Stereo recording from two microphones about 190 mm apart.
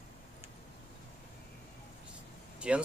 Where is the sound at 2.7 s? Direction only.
5° right (ahead or behind).